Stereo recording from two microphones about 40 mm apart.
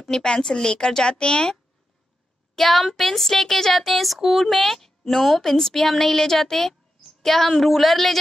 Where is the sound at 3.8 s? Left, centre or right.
Centre.